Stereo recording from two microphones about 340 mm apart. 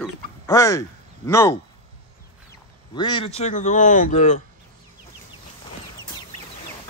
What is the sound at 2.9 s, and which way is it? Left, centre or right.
A man's voice, centre.